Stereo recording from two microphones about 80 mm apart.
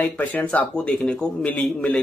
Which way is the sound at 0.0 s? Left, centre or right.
Left.